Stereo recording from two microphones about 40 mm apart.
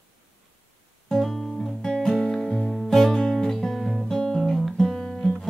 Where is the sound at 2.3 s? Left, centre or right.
Centre.